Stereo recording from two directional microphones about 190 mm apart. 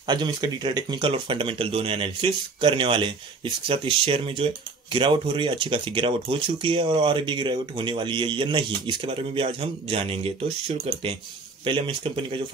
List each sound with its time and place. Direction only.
0.0 s speech: 25° right (ahead or behind)